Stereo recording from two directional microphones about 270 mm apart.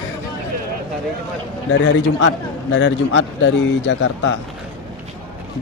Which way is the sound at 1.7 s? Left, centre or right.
Left.